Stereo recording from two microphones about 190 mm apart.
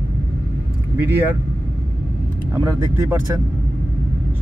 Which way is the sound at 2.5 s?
15° right (ahead or behind).